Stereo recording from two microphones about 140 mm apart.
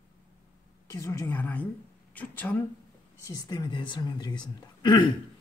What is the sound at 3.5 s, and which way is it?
Speech, 30° left (ahead or behind).